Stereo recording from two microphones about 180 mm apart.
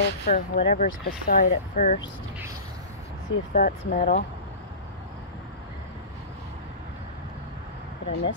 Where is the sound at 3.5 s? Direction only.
50° left (ahead or behind).